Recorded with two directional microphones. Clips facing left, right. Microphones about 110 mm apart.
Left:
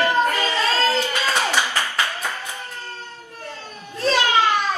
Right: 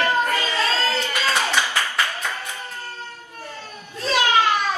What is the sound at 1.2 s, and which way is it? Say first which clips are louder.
Clapping: left 1 dB; 15° left (ahead or behind).